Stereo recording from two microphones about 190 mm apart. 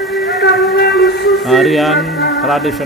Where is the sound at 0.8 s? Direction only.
Centre (ahead or behind).